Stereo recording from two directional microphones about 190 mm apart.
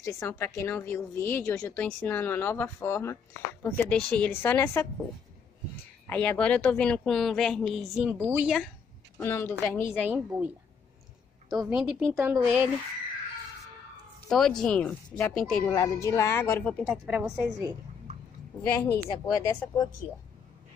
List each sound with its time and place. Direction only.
0.0 s a woman's voice: 15° left (ahead or behind)
6.0 s a woman's voice: 10° left (ahead or behind)
9.2 s a woman's voice: 10° left (ahead or behind)
10.0 s a woman's voice: 10° right (ahead or behind)
14.3 s a woman's voice: 5° left (ahead or behind)
15.7 s a woman's voice: 15° left (ahead or behind)
16.8 s a woman's voice: 5° right (ahead or behind)
18.7 s a woman's voice: 15° left (ahead or behind)